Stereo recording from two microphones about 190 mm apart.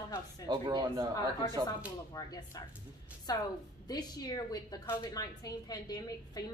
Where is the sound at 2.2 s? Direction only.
20° left (ahead or behind).